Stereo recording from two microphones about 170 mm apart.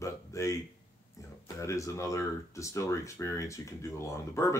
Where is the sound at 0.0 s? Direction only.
20° left (ahead or behind).